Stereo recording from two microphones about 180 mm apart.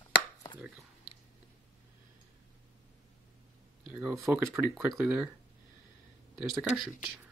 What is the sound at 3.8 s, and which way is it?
Speech, 5° right (ahead or behind).